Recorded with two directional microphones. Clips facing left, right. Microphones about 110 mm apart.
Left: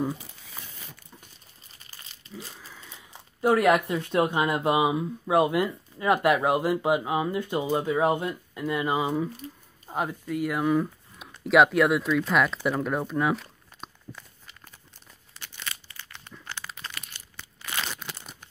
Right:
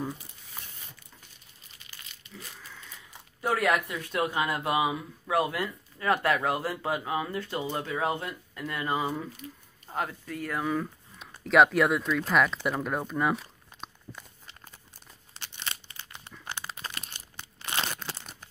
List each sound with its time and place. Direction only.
1.9 s crumpling: 35° left (ahead or behind)
2.7 s speech: 20° left (ahead or behind); by 13.8 s centre (ahead or behind)
15.3 s crumpling: 25° right (ahead or behind)